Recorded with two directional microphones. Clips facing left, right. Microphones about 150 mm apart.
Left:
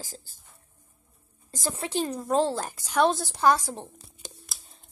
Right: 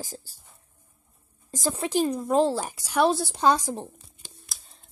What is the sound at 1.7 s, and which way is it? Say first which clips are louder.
A woman's voice: right 5 dB; 20° right (ahead or behind).